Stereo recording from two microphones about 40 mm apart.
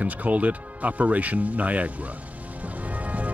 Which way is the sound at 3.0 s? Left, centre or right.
Right.